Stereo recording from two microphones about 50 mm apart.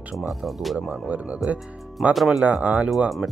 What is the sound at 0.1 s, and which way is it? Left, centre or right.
Speech, centre.